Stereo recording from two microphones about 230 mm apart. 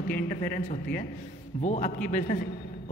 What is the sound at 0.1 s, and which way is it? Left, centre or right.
A man's voice, left.